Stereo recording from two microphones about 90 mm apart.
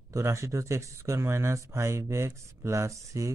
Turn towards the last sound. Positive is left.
turn(degrees=-35)  # may be behind; listen again after turning